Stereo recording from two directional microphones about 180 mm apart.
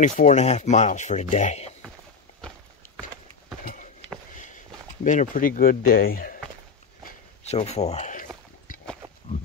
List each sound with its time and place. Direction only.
0.0 s speech: 40° left (ahead or behind)
5.0 s speech: 45° left (ahead or behind)
7.4 s speech: 35° left (ahead or behind)